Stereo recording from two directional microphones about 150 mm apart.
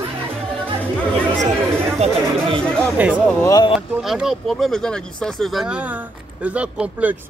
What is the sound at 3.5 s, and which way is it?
Speech, 25° left (ahead or behind).